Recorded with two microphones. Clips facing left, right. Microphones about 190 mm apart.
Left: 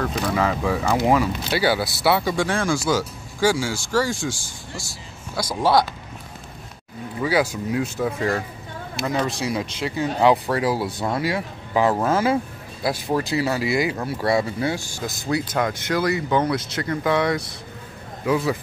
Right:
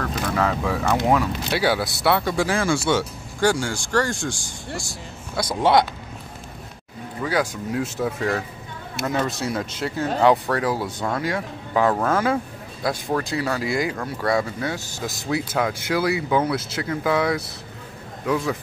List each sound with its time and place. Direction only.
0.0 s a man's voice: centre (ahead or behind)
5.6 s speech: 20° right (ahead or behind)
7.2 s speech: 5° left (ahead or behind)
15.0 s speech: centre (ahead or behind)